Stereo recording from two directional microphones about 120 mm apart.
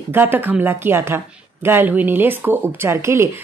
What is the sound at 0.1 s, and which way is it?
A woman's voice, 15° right (ahead or behind).